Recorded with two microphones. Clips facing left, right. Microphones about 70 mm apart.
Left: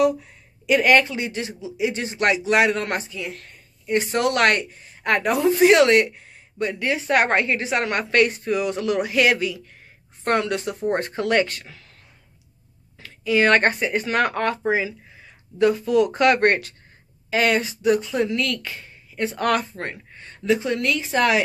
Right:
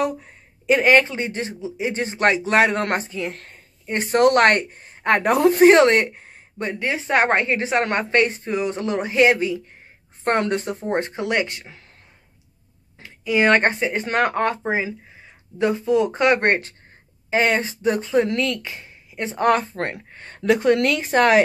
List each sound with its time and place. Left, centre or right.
0.0 s a woman's voice: right
5.3 s speech: right
5.7 s a woman's voice: right
13.0 s speech: right
19.7 s speech: right